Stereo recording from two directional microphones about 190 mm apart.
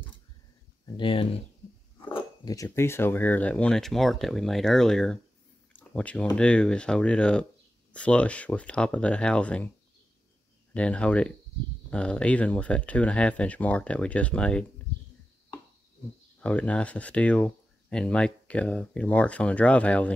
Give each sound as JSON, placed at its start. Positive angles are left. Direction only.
{"t": 0.9, "sound": "speech", "side_deg": 30}
{"t": 2.0, "sound": "speech", "side_deg": 15}
{"t": 5.7, "sound": "a sound", "side_deg": 5}
{"t": 6.3, "sound": "speech", "side_deg": 5}
{"t": 10.7, "sound": "speech", "side_deg": 5}
{"t": 16.3, "sound": "speech", "side_deg": 5}